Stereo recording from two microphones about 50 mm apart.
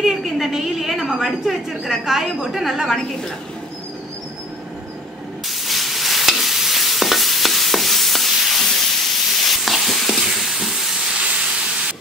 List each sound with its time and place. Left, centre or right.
0.0 s a woman's voice: centre
5.7 s stir: centre
8.6 s sizzle: centre
11.1 s steam: right